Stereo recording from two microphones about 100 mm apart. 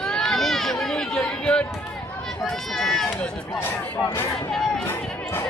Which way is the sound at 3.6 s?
25° left (ahead or behind).